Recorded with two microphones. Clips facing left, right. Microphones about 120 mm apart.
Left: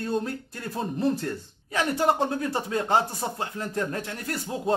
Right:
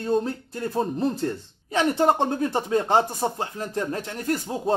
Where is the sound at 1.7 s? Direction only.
25° right (ahead or behind).